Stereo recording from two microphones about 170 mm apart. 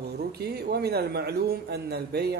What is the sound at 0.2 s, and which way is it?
A man's voice, 70° right (ahead or behind).